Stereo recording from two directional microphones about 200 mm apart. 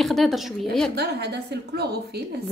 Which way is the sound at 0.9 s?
55° right (ahead or behind).